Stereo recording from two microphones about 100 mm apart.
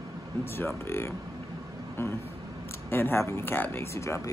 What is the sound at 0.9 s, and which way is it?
Speech, 25° left (ahead or behind).